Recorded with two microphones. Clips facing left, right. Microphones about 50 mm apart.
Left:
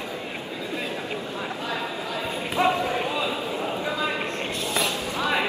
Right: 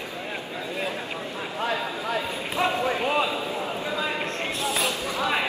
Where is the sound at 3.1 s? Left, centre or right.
Right.